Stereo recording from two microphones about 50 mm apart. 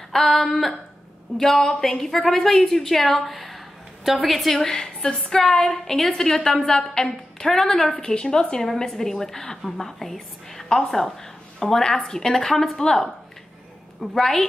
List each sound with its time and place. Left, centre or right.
0.1 s a sound: centre
1.4 s a woman's voice: centre
2.7 s a sound: centre
4.3 s a woman's voice: centre
8.0 s a woman's voice: centre
14.1 s a woman's voice: centre